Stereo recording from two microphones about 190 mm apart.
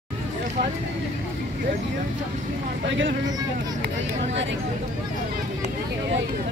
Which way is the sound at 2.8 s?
70° right (ahead or behind).